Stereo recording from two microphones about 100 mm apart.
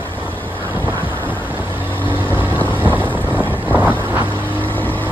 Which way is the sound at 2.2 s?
20° left (ahead or behind).